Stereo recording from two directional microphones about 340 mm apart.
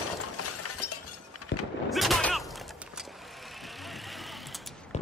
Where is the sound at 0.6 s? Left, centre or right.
Left.